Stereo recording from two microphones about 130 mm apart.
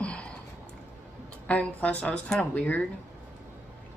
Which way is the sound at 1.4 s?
10° left (ahead or behind).